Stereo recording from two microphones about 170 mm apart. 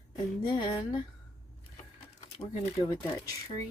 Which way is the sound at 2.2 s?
35° left (ahead or behind).